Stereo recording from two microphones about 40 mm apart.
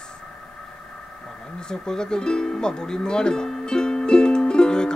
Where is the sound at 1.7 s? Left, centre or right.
Centre.